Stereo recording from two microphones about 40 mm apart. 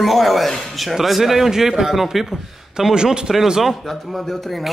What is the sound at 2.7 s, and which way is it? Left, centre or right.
A man's voice, centre.